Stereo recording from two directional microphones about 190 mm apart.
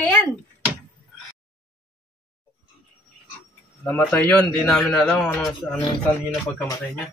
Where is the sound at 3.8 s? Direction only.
10° left (ahead or behind).